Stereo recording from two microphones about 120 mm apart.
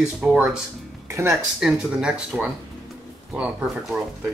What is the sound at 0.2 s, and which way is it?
Speech, 5° right (ahead or behind).